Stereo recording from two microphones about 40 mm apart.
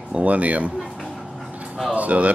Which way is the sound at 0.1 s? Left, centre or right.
Right.